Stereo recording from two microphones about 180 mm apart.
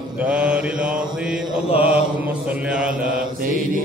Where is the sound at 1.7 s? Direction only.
30° left (ahead or behind).